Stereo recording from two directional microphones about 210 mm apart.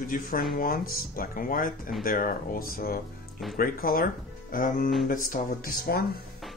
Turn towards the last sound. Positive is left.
turn(degrees=45)  # may be behind; listen again after turning